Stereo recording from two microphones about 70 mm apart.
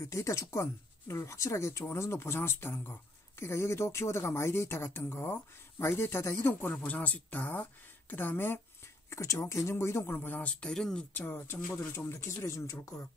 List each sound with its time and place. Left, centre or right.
0.0 s speech: left
6.7 s speech: left
9.1 s speech: left
10.2 s speech: left
10.6 s speech: centre
11.1 s speech: left
11.9 s speech: left